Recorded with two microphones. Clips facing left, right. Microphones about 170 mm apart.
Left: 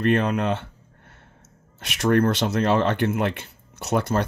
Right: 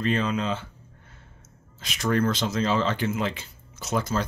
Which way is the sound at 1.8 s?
70° left (ahead or behind).